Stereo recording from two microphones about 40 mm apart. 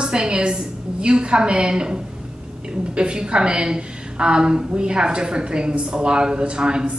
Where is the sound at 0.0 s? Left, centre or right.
Right.